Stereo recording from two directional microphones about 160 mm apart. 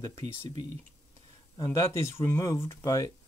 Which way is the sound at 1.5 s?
20° left (ahead or behind).